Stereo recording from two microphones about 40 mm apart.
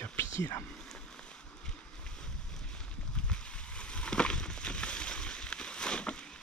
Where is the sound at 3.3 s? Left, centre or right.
Left.